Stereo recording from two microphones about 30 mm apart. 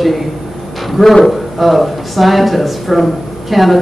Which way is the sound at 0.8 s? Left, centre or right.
Centre.